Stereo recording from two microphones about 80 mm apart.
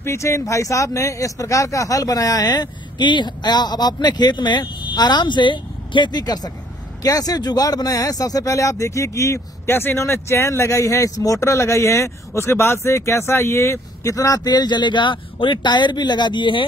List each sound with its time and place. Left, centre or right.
0.0 s speech: left